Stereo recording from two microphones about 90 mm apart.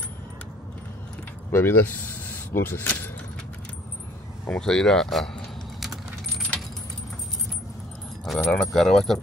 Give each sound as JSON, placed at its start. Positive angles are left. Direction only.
{"t": 1.5, "sound": "speech", "side_deg": 25}
{"t": 4.5, "sound": "keys jangling", "side_deg": 5}
{"t": 8.3, "sound": "speech", "side_deg": 5}